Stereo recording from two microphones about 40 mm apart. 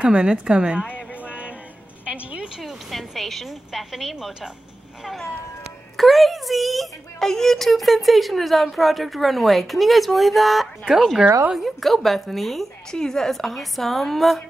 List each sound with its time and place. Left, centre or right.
0.0 s a woman's voice: right
1.2 s music: right
2.0 s a sound: right
2.6 s a woman's voice: centre
5.9 s speech: centre
7.2 s speech: centre
12.9 s speech: centre